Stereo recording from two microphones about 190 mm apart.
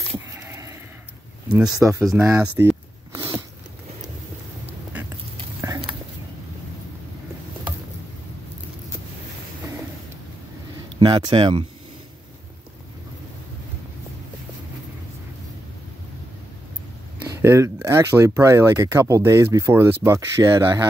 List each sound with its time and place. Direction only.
0.4 s a sound: 15° right (ahead or behind)
1.5 s speech: 5° right (ahead or behind)
1.8 s speech: 15° right (ahead or behind)
3.1 s a sound: 25° right (ahead or behind)
5.6 s dog: 15° right (ahead or behind)
11.0 s speech: 25° right (ahead or behind)
17.4 s speech: 15° right (ahead or behind)